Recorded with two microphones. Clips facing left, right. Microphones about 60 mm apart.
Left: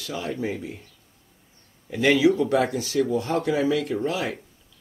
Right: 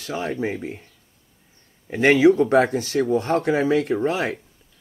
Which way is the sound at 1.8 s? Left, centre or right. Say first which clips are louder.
Right 4 dB; right.